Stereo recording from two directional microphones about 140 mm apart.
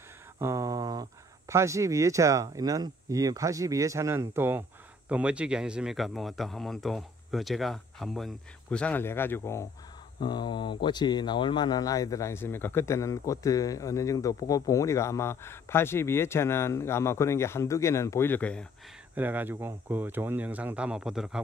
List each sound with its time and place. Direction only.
0.4 s a sound: 20° right (ahead or behind)
1.5 s speech: 20° right (ahead or behind); by 9.7 s 20° left (ahead or behind)
10.2 s speech: 30° left (ahead or behind); by 18.7 s 10° left (ahead or behind)
19.1 s speech: 15° right (ahead or behind)